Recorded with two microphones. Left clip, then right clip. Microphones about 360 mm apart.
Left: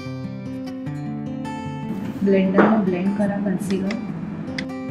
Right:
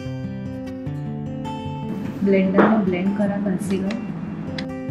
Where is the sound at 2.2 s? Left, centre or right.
Centre.